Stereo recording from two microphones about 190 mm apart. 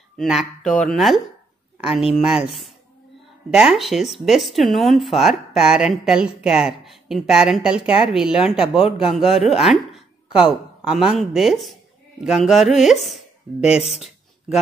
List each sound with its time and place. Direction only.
0.2 s speech: centre (ahead or behind)
13.7 s speech: 35° left (ahead or behind)